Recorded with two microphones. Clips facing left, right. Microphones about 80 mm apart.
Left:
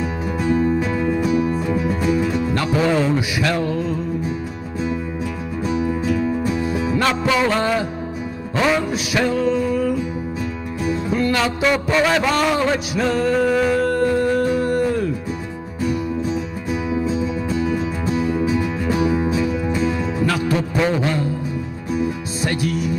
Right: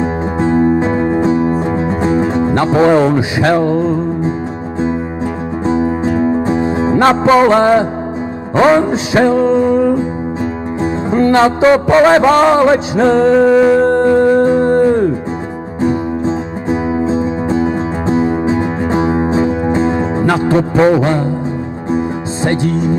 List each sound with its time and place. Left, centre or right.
0.0 s music: right
3.2 s music: right
5.7 s music: right